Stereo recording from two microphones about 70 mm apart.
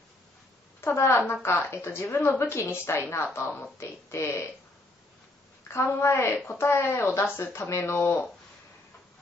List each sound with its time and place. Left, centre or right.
0.7 s speech: left
5.9 s speech: left